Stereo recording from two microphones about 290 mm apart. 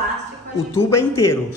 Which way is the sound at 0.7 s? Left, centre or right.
Centre.